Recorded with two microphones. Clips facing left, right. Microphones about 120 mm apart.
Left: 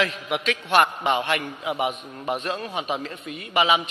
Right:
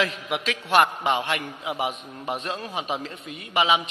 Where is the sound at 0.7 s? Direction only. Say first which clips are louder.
Even; centre (ahead or behind).